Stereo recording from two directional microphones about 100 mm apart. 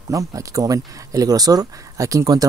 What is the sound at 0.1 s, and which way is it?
Speech, 35° right (ahead or behind).